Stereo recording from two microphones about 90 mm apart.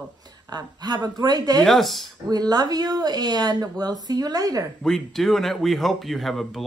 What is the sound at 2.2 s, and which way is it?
Speech, 45° right (ahead or behind).